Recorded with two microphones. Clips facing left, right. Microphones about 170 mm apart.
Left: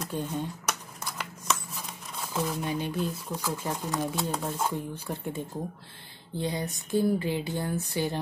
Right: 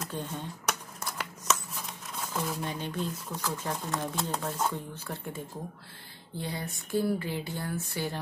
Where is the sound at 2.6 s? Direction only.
10° left (ahead or behind).